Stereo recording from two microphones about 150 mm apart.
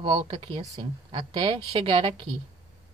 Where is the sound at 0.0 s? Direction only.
35° right (ahead or behind).